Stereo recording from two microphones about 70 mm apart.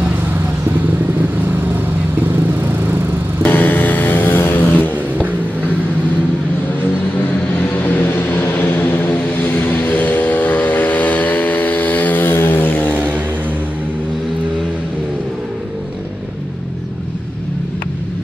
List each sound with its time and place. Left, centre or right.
3.4 s vehicle: left
7.5 s vehicle: left